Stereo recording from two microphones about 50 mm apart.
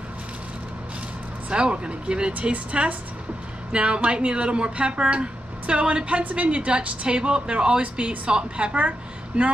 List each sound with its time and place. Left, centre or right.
1.5 s speech: right